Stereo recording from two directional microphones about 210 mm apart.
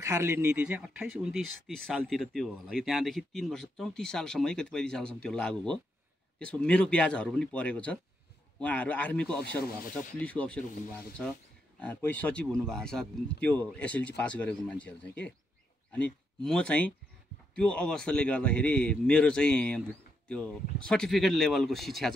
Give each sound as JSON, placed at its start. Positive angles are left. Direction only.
{"t": 0.0, "sound": "speech", "side_deg": -15}
{"t": 9.6, "sound": "speech", "side_deg": 45}
{"t": 10.1, "sound": "speech", "side_deg": 5}
{"t": 11.8, "sound": "speech", "side_deg": 5}